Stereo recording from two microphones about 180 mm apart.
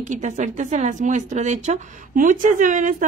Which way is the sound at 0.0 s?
45° right (ahead or behind).